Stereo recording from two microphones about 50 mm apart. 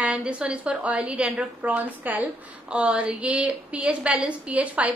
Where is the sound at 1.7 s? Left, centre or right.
Right.